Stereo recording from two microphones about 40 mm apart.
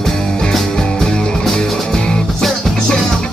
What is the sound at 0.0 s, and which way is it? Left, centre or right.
Music, centre.